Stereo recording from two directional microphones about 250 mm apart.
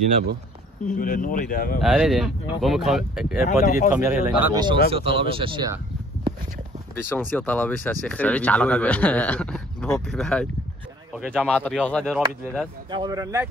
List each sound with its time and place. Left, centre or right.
0.8 s speech: left
1.8 s speech: centre
4.6 s speech: centre
7.0 s speech: centre
12.9 s speech: centre